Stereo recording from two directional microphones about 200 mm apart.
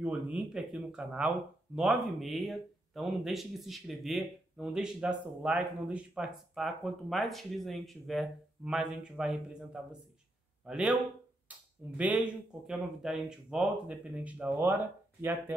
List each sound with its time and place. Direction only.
0.0 s a man's voice: 5° right (ahead or behind)